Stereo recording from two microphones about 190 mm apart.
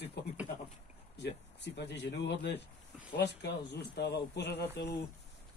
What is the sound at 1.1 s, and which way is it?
Speech, 65° left (ahead or behind).